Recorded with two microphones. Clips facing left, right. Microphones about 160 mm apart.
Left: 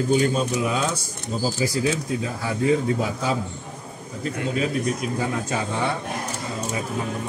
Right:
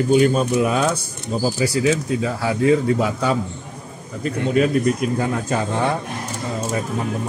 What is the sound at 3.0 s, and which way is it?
Speech, 65° right (ahead or behind).